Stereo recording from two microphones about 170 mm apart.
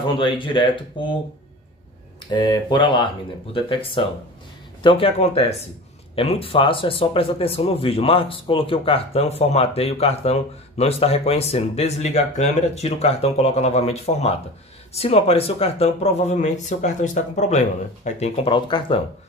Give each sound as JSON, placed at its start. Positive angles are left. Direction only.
{"t": 0.0, "sound": "speech", "side_deg": 30}
{"t": 2.3, "sound": "speech", "side_deg": 25}